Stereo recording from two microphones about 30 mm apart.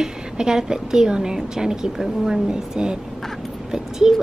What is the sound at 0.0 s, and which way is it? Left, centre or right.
A woman's voice, right.